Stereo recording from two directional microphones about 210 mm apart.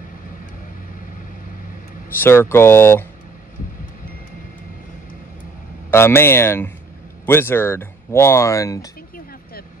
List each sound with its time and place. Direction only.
2.1 s speech: 10° left (ahead or behind)
5.9 s speech: 10° left (ahead or behind)
9.1 s a sound: 45° left (ahead or behind)